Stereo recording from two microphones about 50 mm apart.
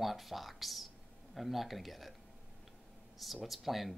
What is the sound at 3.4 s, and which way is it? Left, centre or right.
Speech, centre.